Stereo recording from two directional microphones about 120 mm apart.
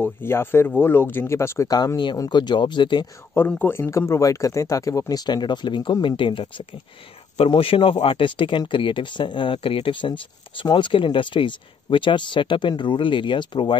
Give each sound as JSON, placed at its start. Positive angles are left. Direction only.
{"t": 0.0, "sound": "speech", "side_deg": 20}
{"t": 1.7, "sound": "speech", "side_deg": 35}
{"t": 3.3, "sound": "speech", "side_deg": 15}